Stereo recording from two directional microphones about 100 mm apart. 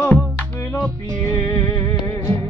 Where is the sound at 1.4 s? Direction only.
25° left (ahead or behind).